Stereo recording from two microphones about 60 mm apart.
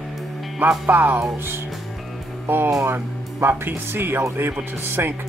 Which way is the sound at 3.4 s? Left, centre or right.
Right.